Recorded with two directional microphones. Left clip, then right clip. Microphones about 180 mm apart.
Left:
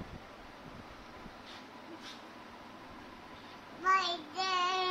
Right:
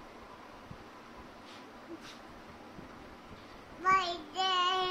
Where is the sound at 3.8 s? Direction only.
20° right (ahead or behind).